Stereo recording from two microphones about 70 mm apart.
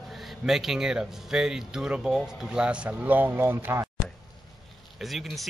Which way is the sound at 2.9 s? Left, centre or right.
Right.